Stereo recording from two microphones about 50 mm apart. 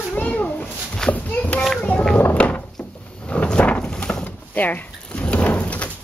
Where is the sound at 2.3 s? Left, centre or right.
Left.